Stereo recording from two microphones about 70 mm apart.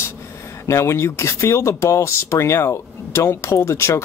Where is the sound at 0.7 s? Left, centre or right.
Left.